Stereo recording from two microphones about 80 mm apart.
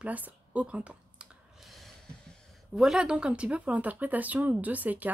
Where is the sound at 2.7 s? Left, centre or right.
Centre.